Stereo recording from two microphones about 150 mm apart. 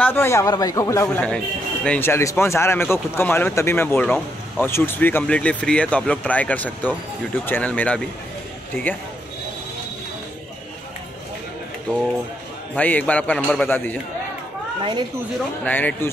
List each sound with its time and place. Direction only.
0.0 s speech: 15° left (ahead or behind)
1.0 s speech: 5° left (ahead or behind)
12.7 s speech: 10° left (ahead or behind)
14.8 s speech: 30° right (ahead or behind)
15.6 s speech: 10° left (ahead or behind)